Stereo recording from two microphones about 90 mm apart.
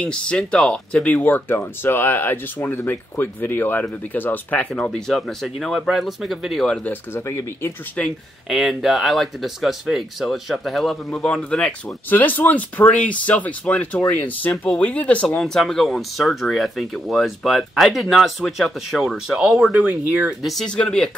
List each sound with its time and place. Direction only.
0.0 s speech: 10° left (ahead or behind)
6.7 s speech: 20° left (ahead or behind)
8.0 s speech: 15° left (ahead or behind)
8.5 s speech: centre (ahead or behind); by 15.2 s 15° left (ahead or behind)
15.2 s speech: 5° left (ahead or behind)
19.8 s speech: 20° right (ahead or behind)
20.4 s speech: 5° left (ahead or behind)